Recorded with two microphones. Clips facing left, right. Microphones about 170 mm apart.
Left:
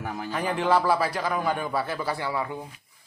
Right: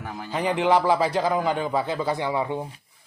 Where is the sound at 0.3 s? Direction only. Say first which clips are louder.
Right 3 dB; 20° right (ahead or behind).